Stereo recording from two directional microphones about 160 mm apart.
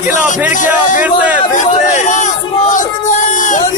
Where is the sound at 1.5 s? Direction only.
50° left (ahead or behind).